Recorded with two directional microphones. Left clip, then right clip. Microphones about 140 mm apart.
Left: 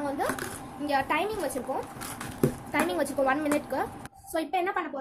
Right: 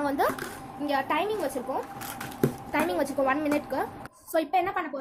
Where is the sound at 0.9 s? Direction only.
10° right (ahead or behind).